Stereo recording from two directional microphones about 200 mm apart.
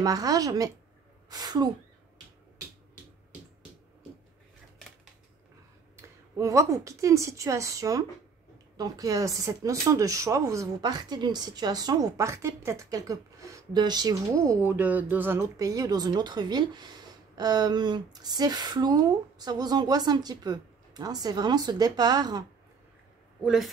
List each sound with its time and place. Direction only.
0.0 s speech: 20° right (ahead or behind)
5.9 s a woman's voice: 15° right (ahead or behind)
23.4 s a woman's voice: centre (ahead or behind)